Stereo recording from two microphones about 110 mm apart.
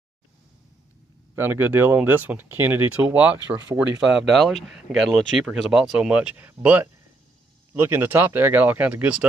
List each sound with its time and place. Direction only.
1.3 s speech: 20° right (ahead or behind)